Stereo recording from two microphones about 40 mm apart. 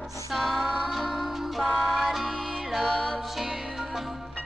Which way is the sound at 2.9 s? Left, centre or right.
Centre.